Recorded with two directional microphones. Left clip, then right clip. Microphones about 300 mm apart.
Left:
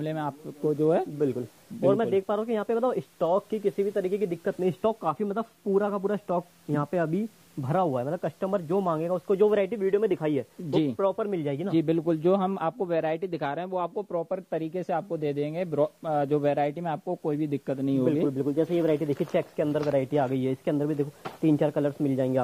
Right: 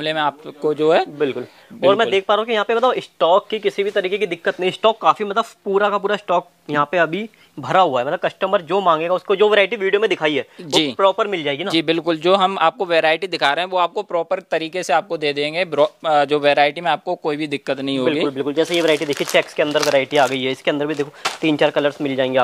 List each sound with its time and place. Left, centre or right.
0.0 s speech: centre